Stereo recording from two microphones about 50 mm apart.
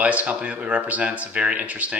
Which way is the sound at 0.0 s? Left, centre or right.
Right.